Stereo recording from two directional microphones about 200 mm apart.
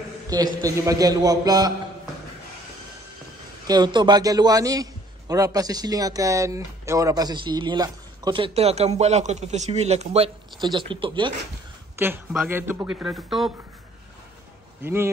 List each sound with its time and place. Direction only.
0.3 s speech: 20° right (ahead or behind)
3.6 s speech: 20° right (ahead or behind)
12.0 s speech: 10° right (ahead or behind)
14.8 s a man's voice: 10° right (ahead or behind)